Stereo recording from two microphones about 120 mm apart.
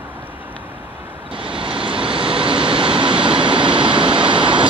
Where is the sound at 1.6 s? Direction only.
45° right (ahead or behind).